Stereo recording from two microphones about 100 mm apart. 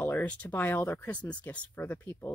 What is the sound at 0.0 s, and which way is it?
Speech, 15° left (ahead or behind).